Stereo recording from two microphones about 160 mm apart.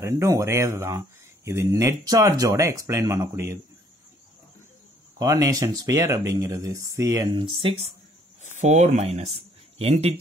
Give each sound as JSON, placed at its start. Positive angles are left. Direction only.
{"t": 0.0, "sound": "speech", "side_deg": -20}
{"t": 5.2, "sound": "speech", "side_deg": -20}
{"t": 8.5, "sound": "speech", "side_deg": -45}